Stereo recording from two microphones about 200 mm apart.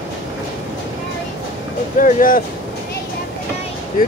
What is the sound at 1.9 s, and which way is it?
Speech, 40° left (ahead or behind).